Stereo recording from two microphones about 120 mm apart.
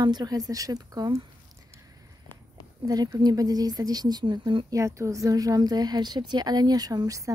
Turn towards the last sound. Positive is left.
turn(degrees=-30)  # may be behind; listen again after turning